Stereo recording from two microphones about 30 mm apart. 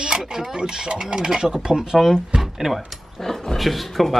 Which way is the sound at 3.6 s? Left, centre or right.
Centre.